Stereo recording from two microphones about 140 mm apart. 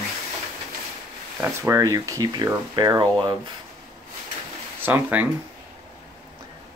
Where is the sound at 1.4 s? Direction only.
20° right (ahead or behind).